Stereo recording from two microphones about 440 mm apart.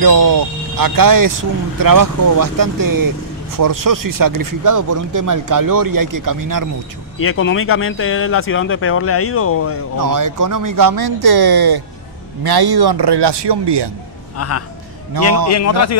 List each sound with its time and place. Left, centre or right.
0.0 s speech: right
7.2 s speech: left
9.9 s speech: right
15.4 s speech: left